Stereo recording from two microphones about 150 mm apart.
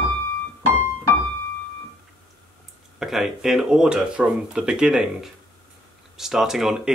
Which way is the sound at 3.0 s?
Centre (ahead or behind).